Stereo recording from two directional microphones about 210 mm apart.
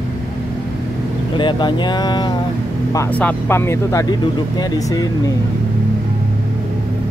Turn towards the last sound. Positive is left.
turn(degrees=15)  # may be behind; listen again after turning